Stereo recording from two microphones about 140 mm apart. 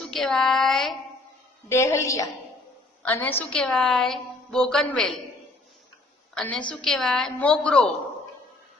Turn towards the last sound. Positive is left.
turn(degrees=5)  # may be behind; listen again after turning